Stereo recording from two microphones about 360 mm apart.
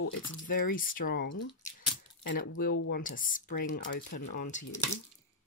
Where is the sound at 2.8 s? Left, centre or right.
Left.